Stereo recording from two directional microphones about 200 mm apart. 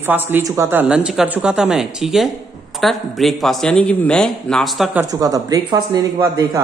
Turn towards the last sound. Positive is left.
turn(degrees=-20)  # may be behind; listen again after turning